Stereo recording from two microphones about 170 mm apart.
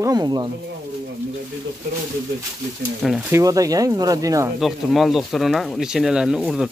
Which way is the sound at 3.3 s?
20° right (ahead or behind).